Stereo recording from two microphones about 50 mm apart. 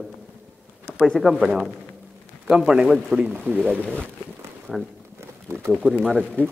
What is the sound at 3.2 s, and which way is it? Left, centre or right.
Speech, right.